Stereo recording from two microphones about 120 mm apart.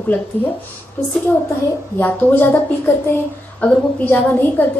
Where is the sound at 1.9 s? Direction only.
15° left (ahead or behind).